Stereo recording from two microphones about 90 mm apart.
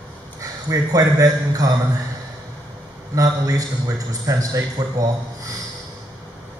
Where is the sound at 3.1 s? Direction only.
40° right (ahead or behind).